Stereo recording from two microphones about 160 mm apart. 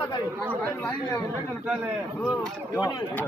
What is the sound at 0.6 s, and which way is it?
Speech, 10° left (ahead or behind).